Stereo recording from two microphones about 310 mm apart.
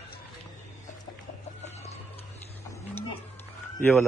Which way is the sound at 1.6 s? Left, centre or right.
Left.